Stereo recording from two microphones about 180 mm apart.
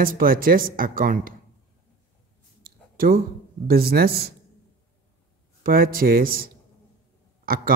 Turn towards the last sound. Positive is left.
turn(degrees=-55)  # may be behind; listen again after turning